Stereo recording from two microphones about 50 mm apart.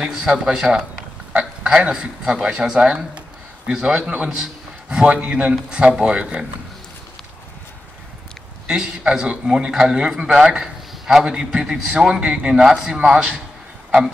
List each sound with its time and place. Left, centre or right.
0.1 s a man's voice: centre
8.6 s a man's voice: centre